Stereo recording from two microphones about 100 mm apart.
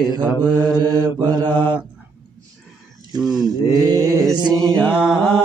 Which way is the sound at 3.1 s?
45° right (ahead or behind).